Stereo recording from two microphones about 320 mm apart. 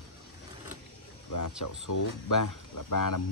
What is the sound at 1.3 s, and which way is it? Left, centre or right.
Speech, left.